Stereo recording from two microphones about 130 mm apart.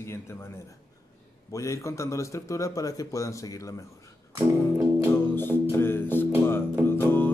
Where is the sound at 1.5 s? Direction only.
25° left (ahead or behind).